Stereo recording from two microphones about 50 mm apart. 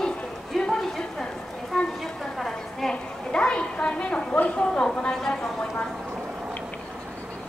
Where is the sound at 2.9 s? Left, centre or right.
Centre.